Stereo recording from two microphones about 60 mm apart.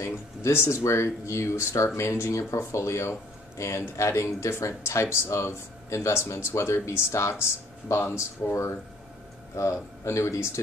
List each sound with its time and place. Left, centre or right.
0.0 s speech: left